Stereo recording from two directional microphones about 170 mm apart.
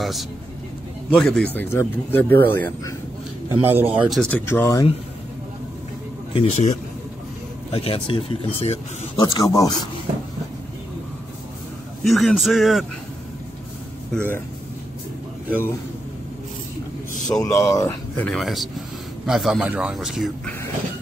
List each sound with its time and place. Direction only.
0.0 s speech: centre (ahead or behind)
3.6 s speech: 10° right (ahead or behind)
4.1 s speech: 5° left (ahead or behind)
6.3 s speech: 40° left (ahead or behind)
7.7 s speech: 35° left (ahead or behind)
12.0 s a man's voice: centre (ahead or behind)
17.3 s speech: 20° left (ahead or behind)
18.1 s a man's voice: 5° left (ahead or behind)